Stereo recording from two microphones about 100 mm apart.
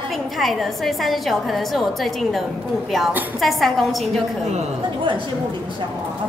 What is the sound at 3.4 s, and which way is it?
Speech, centre (ahead or behind).